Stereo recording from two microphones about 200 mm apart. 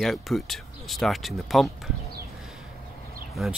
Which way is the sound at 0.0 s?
Centre (ahead or behind).